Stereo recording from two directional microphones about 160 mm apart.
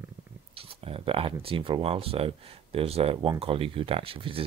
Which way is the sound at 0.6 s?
35° right (ahead or behind).